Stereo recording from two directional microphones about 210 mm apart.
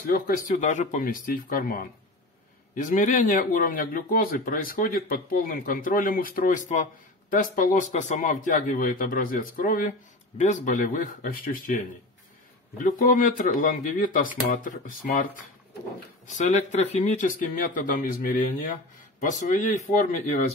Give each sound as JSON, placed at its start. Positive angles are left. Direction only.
{"t": 0.1, "sound": "speech", "side_deg": 35}
{"t": 16.3, "sound": "speech", "side_deg": 35}